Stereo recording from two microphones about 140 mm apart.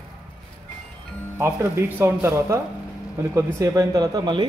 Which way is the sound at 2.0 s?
15° right (ahead or behind).